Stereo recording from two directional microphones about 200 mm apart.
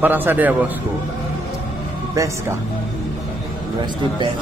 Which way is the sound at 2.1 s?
15° right (ahead or behind).